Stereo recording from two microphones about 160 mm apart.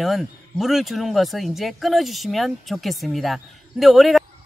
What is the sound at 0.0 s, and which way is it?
Speech, centre (ahead or behind).